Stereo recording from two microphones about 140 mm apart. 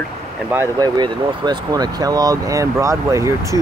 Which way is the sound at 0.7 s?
30° right (ahead or behind).